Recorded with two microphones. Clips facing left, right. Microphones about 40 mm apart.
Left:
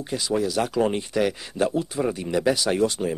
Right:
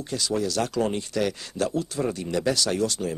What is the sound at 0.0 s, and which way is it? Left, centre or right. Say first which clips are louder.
Speech: left 2 dB; centre.